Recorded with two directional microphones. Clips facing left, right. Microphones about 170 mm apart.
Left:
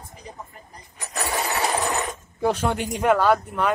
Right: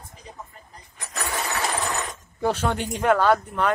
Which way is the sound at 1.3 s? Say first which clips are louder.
Left 3 dB; 20° left (ahead or behind).